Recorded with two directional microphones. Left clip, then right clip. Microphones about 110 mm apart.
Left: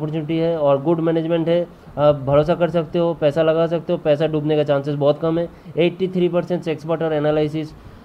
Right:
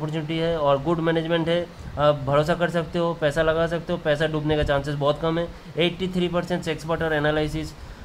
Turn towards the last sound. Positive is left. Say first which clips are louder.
# left 4 dB
turn(degrees=30)  # may be behind; listen again after turning